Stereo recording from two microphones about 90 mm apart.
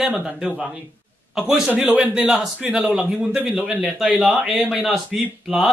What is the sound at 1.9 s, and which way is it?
Speech, 15° right (ahead or behind).